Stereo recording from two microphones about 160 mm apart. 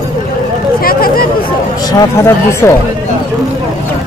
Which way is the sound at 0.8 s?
65° left (ahead or behind).